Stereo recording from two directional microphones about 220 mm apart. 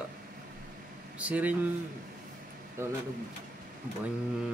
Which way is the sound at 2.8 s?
10° right (ahead or behind).